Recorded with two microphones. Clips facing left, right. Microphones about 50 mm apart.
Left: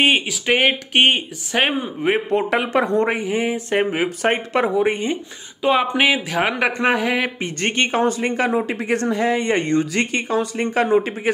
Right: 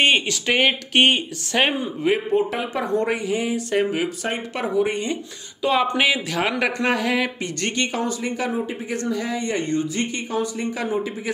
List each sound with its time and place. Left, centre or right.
0.0 s speech: centre
2.3 s speech: left
3.0 s speech: left
4.9 s speech: left
9.8 s speech: left